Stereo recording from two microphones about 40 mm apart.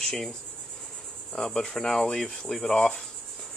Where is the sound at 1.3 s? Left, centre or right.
Centre.